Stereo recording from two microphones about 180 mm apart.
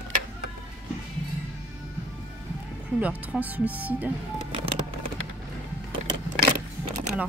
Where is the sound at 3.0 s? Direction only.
10° right (ahead or behind).